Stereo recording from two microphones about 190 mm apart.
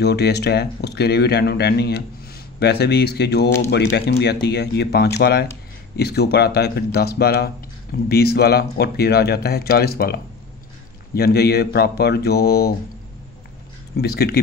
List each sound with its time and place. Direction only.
0.0 s speech: 60° left (ahead or behind)
13.9 s speech: 55° left (ahead or behind)